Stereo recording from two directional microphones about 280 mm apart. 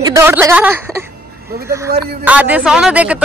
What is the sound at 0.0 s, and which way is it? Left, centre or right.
Speech, centre.